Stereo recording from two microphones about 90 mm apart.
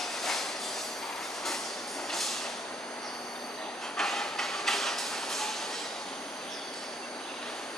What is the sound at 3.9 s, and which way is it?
Train, 5° left (ahead or behind).